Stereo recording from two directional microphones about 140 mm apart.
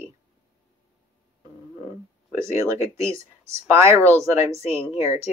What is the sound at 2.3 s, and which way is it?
Speech, 20° right (ahead or behind).